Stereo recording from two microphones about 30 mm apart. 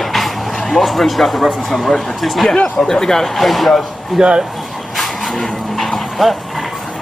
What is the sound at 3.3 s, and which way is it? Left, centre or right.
Speech, centre.